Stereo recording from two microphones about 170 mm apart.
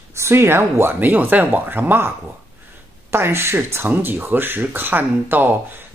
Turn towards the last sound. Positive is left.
turn(degrees=-10)  # may be behind; listen again after turning